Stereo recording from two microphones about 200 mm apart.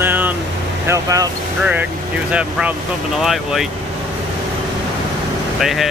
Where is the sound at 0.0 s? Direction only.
10° right (ahead or behind).